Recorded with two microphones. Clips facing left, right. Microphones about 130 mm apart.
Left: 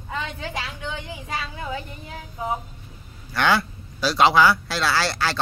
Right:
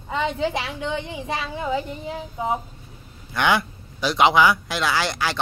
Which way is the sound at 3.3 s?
20° right (ahead or behind).